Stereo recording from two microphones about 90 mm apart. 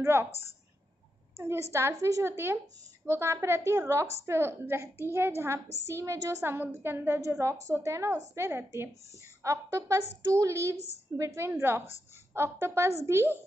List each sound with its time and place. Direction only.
0.0 s a woman's voice: 25° right (ahead or behind)
1.3 s a woman's voice: 30° right (ahead or behind)
9.4 s a woman's voice: 35° right (ahead or behind)